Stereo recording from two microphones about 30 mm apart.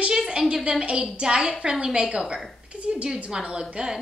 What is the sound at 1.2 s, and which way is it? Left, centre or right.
A woman's voice, right.